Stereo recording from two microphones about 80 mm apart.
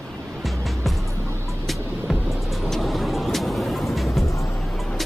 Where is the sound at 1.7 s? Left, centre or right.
Centre.